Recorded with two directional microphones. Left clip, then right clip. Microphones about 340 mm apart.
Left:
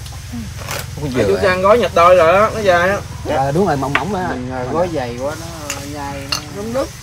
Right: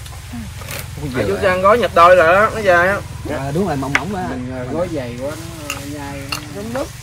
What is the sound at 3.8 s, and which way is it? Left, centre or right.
Speech, centre.